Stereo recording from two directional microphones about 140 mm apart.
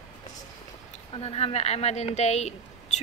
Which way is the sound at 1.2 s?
45° left (ahead or behind).